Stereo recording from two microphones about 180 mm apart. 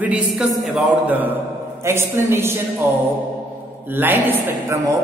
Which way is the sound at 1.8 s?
15° right (ahead or behind).